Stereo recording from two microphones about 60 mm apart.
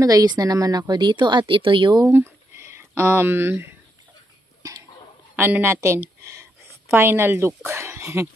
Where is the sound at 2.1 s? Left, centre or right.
Right.